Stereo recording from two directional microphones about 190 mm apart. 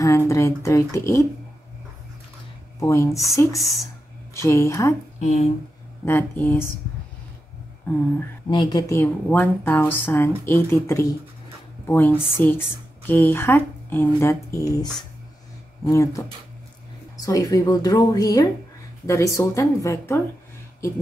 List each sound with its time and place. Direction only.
0.3 s speech: 15° left (ahead or behind)
2.8 s speech: 15° left (ahead or behind)
5.2 s speech: 35° left (ahead or behind)
6.0 s speech: 10° left (ahead or behind)
8.5 s speech: 25° left (ahead or behind)